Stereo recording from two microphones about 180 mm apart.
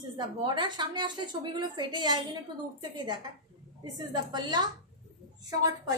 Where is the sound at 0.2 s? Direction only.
25° right (ahead or behind).